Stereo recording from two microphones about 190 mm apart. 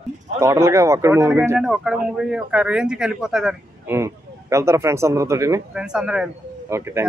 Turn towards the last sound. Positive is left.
turn(degrees=-15)  # may be behind; listen again after turning